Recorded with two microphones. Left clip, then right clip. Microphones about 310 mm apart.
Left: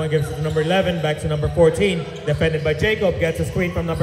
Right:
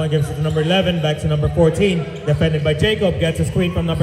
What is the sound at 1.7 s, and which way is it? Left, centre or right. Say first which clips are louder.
Speech: right 2 dB; right.